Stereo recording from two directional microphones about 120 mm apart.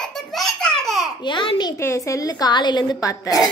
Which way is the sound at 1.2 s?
45° left (ahead or behind).